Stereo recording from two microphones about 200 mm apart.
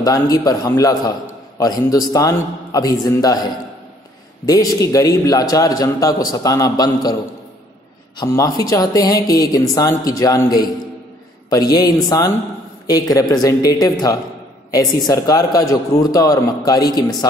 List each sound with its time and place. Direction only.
0.0 s a man's voice: 20° left (ahead or behind)
4.5 s a man's voice: 20° left (ahead or behind)
8.6 s a man's voice: 15° left (ahead or behind)